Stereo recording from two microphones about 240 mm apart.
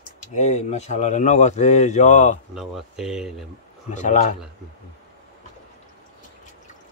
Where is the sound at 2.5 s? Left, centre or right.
Centre.